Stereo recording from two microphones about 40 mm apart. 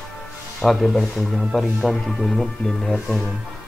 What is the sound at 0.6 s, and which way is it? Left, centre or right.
Speech, centre.